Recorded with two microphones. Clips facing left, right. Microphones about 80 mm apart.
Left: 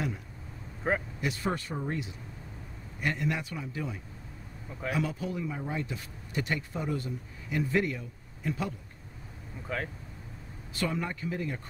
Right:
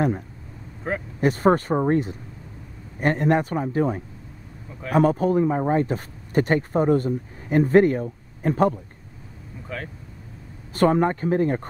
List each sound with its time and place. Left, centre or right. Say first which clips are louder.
0.8 s speech: right 2 dB; centre
1.2 s speech: right 13 dB; right
9.7 s speech: right 1 dB; centre
10.7 s speech: right 14 dB; right